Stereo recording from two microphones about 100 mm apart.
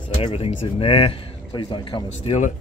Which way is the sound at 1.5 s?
50° left (ahead or behind).